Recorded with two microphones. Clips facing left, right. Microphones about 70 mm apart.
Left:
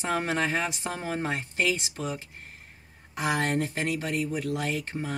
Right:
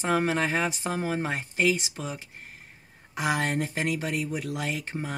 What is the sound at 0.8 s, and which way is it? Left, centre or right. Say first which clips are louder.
Speech: right 2 dB; centre.